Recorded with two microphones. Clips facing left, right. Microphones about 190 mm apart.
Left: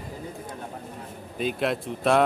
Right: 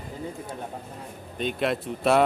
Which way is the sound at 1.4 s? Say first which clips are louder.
Even; centre (ahead or behind).